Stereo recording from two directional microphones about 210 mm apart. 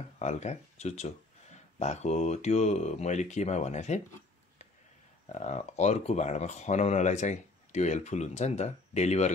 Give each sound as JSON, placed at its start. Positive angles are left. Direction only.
{"t": 0.2, "sound": "speech", "side_deg": 35}
{"t": 5.3, "sound": "speech", "side_deg": 35}